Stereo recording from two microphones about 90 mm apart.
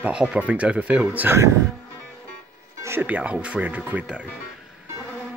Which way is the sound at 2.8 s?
25° right (ahead or behind).